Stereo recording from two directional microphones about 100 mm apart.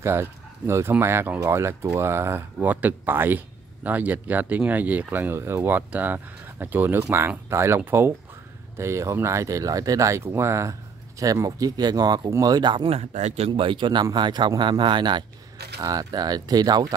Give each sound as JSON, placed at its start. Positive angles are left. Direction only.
{"t": 0.0, "sound": "speech", "side_deg": -25}
{"t": 12.8, "sound": "speech", "side_deg": -90}
{"t": 13.5, "sound": "speech", "side_deg": -55}
{"t": 15.8, "sound": "speech", "side_deg": -40}